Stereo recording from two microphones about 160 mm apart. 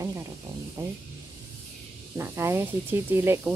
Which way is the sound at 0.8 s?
20° right (ahead or behind).